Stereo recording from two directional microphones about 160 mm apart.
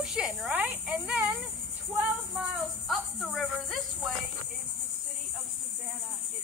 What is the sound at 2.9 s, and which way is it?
Speech, centre (ahead or behind).